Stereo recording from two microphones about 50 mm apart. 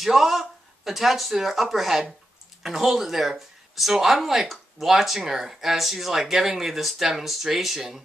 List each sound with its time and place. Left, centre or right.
0.0 s speech: centre